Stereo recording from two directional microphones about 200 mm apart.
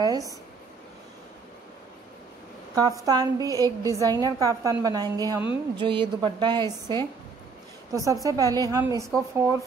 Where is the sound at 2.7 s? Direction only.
20° right (ahead or behind).